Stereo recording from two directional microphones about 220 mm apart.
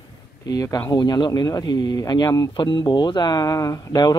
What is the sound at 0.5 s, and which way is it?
Speech, 15° left (ahead or behind).